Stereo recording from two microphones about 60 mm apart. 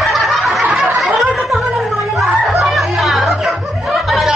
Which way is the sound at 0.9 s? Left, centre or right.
Centre.